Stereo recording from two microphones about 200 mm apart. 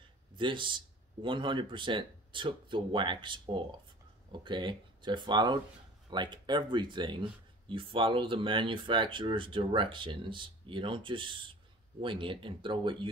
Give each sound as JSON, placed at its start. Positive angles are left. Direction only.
{"t": 0.4, "sound": "speech", "side_deg": -25}